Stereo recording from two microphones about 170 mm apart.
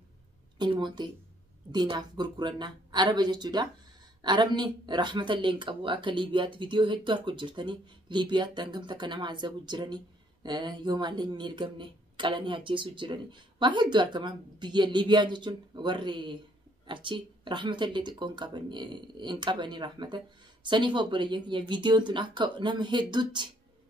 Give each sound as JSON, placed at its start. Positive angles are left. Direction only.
{"t": 0.6, "sound": "speech", "side_deg": -25}